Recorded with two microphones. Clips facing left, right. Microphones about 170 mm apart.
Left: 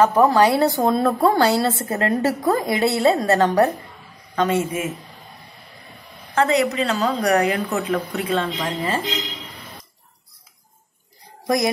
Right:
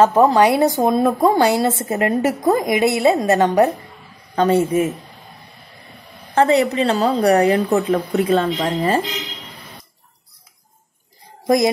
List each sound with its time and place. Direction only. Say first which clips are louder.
0.0 s a woman's voice: right 2 dB; 20° right (ahead or behind)
4.4 s a woman's voice: right 5 dB; 35° right (ahead or behind)
6.3 s a woman's voice: right 4 dB; 35° right (ahead or behind)
11.4 s speech: right 5 dB; 25° right (ahead or behind)